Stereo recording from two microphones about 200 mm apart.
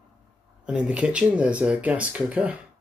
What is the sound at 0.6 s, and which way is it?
Speech, 5° right (ahead or behind).